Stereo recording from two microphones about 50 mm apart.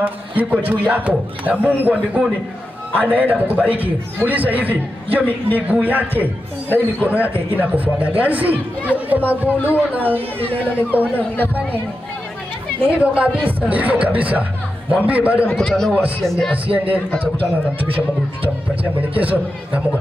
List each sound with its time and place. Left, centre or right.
0.0 s a man's voice: right
3.0 s a man's voice: right
6.7 s a man's voice: left
7.7 s a man's voice: right
11.1 s a man's voice: left
12.8 s a woman's voice: right
15.5 s a man's voice: centre
16.6 s a man's voice: right
18.9 s a man's voice: right